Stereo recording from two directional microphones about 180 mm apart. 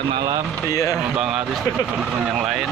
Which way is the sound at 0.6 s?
15° left (ahead or behind).